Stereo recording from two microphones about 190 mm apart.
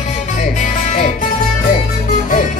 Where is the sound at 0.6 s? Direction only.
40° left (ahead or behind).